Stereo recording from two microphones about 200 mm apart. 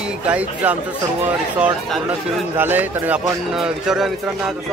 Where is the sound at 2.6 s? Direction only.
10° right (ahead or behind).